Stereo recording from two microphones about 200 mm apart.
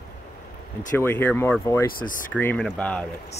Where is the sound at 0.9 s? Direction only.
10° left (ahead or behind).